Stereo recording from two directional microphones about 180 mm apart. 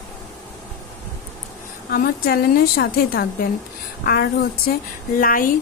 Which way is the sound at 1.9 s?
55° left (ahead or behind).